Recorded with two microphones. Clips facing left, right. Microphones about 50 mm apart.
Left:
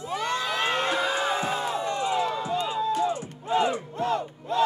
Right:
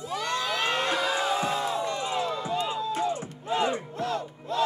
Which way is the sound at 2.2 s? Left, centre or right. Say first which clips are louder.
Left 2 dB; left.